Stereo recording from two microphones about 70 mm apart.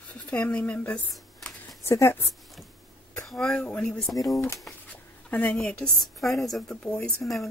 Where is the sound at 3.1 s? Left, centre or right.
Centre.